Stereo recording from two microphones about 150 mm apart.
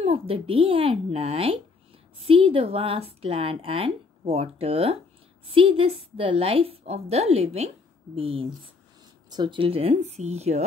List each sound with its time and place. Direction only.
0.0 s speech: 40° right (ahead or behind)